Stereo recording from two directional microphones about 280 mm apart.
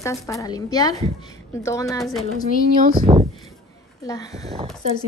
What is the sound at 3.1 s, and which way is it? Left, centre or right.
Speech, centre.